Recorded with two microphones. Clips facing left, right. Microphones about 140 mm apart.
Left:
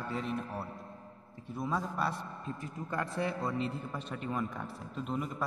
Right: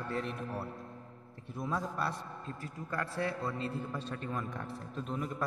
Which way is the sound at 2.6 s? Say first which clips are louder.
Left 1 dB; 20° left (ahead or behind).